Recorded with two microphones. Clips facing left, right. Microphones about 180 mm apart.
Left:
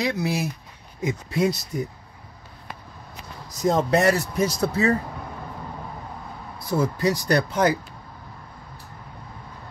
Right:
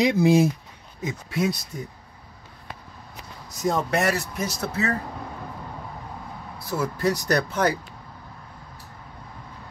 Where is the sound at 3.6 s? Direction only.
25° left (ahead or behind).